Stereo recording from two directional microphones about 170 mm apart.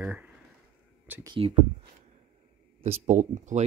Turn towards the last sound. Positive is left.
turn(degrees=-45)  # may be behind; listen again after turning